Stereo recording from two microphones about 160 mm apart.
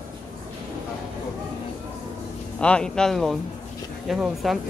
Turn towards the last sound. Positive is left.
turn(degrees=0)  # may be behind; listen again after turning